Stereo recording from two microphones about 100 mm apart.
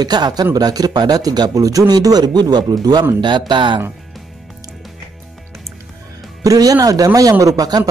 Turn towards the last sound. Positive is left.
turn(degrees=-40)  # may be behind; listen again after turning